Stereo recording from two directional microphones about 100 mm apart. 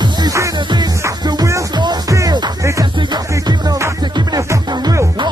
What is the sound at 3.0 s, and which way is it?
Music, 45° right (ahead or behind).